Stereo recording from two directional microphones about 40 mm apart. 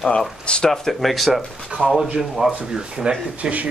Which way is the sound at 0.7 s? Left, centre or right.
Centre.